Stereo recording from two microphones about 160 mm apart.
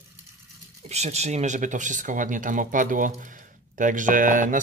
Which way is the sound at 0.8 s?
45° right (ahead or behind).